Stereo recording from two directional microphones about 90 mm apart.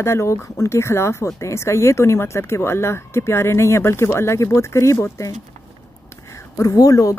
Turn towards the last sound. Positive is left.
turn(degrees=40)  # may be behind; listen again after turning